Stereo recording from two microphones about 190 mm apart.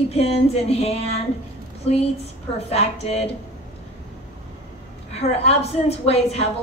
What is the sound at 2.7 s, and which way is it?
Speech, 35° left (ahead or behind).